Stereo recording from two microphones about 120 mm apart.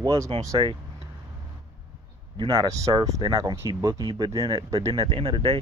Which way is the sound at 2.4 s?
35° right (ahead or behind).